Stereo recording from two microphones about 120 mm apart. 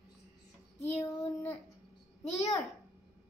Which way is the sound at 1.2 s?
20° left (ahead or behind).